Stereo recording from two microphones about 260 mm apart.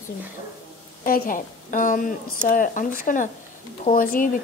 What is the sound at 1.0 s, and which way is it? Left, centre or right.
A woman's voice, left.